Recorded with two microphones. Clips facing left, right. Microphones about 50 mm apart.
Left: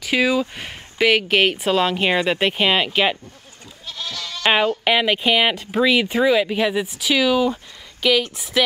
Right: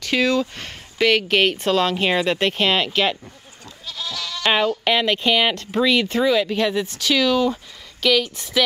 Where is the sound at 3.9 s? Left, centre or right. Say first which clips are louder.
Right 1 dB; left.